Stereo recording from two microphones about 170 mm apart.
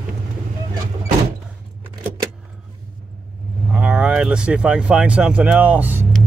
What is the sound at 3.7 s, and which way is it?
Speech, 5° right (ahead or behind).